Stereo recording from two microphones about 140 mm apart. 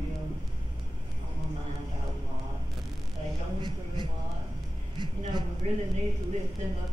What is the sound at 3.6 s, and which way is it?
A man's voice, 30° right (ahead or behind).